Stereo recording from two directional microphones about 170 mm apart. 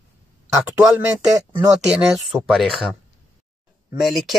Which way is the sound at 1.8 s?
5° right (ahead or behind).